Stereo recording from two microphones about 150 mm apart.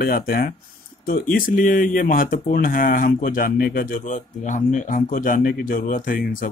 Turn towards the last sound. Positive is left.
turn(degrees=65)  # may be behind; listen again after turning